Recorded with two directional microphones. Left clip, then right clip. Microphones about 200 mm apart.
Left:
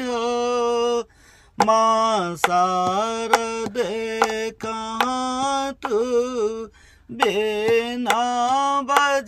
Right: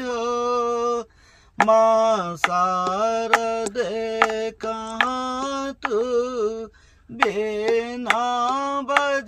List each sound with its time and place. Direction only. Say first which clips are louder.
0.0 s a sound: left 1 dB; 40° left (ahead or behind)
1.7 s mantra: right 1 dB; 35° left (ahead or behind)
4.7 s music: even; 60° left (ahead or behind)
5.4 s music: left 3 dB; 40° left (ahead or behind)
7.2 s mantra: left 2 dB; 45° left (ahead or behind)